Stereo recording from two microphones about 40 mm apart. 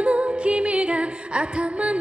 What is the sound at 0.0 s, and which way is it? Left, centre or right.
Music, right.